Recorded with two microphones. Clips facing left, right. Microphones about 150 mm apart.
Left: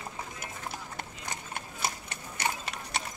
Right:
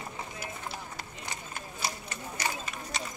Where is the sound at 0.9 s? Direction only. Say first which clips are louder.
Left 1 dB; 55° left (ahead or behind).